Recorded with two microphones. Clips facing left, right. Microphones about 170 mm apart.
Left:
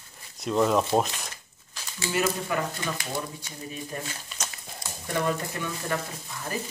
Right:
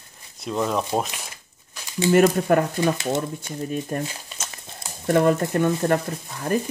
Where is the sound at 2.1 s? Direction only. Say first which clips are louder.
Right 10 dB; 55° right (ahead or behind).